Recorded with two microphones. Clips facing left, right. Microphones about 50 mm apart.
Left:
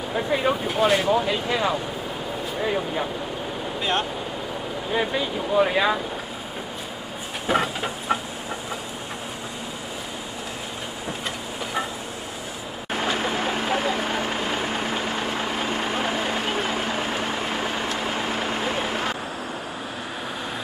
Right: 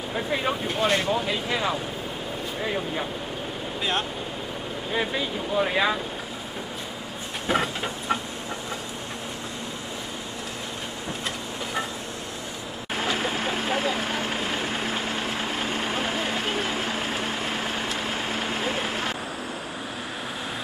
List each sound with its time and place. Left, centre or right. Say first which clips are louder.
0.1 s speech: left 4 dB; centre
4.9 s speech: left 3 dB; centre
7.4 s train: left 2 dB; centre
12.9 s vehicle: left 2 dB; left
14.2 s a sound: left 2 dB; centre
15.0 s vehicle: left 2 dB; left
15.3 s vehicle: left 2 dB; centre